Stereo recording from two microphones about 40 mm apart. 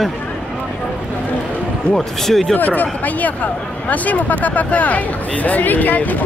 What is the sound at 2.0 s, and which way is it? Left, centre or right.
Speech, centre.